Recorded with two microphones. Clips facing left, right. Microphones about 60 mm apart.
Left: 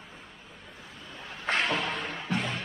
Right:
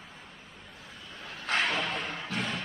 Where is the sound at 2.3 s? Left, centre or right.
Centre.